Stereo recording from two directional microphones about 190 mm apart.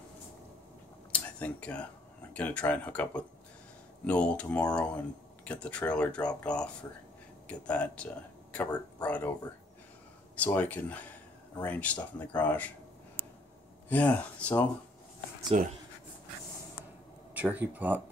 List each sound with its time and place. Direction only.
1.4 s speech: 5° left (ahead or behind)
10.3 s speech: 10° left (ahead or behind)
13.8 s speech: 10° left (ahead or behind)
15.5 s speech: 35° right (ahead or behind)
17.3 s speech: 10° right (ahead or behind)